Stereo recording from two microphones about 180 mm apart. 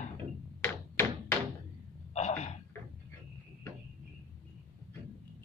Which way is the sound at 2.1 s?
40° left (ahead or behind).